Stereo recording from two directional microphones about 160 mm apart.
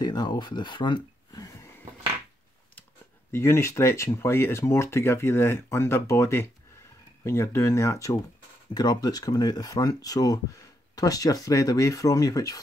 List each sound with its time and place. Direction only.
0.0 s speech: 25° left (ahead or behind)
3.3 s speech: 15° left (ahead or behind)